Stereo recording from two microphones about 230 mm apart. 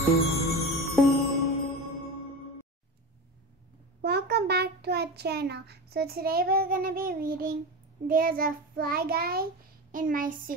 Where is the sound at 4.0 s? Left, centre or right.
Right.